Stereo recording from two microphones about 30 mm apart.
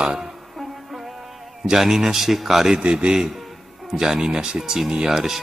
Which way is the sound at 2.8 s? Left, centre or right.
Right.